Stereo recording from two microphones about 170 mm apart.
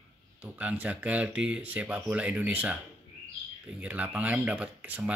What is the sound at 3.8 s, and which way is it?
Speech, 10° right (ahead or behind).